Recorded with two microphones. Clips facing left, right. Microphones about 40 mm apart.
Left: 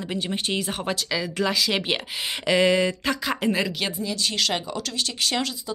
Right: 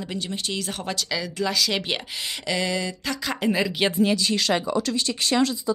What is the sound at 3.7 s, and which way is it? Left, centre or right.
Speech, centre.